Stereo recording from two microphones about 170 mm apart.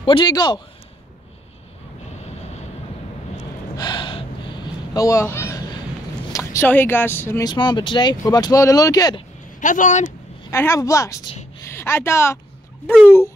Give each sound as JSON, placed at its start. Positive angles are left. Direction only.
{"t": 0.0, "sound": "speech", "side_deg": 30}
{"t": 2.2, "sound": "vehicle", "side_deg": 40}
{"t": 3.7, "sound": "a sound", "side_deg": 25}
{"t": 6.3, "sound": "speech", "side_deg": 15}
{"t": 9.6, "sound": "a man's voice", "side_deg": 50}
{"t": 10.5, "sound": "a woman's voice", "side_deg": 15}